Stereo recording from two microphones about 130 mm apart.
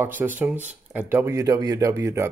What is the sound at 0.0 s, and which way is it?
Speech, 15° right (ahead or behind).